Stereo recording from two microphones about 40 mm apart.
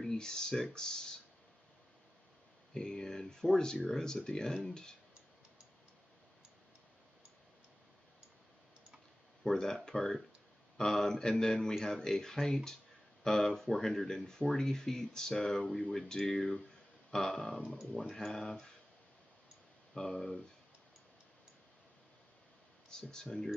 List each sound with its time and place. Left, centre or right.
0.0 s speech: centre
2.7 s speech: centre
9.4 s speech: centre
19.9 s speech: centre
22.8 s speech: centre
23.2 s speech: centre